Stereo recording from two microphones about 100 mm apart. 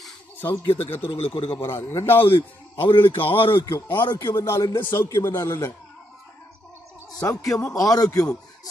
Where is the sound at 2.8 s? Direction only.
60° left (ahead or behind).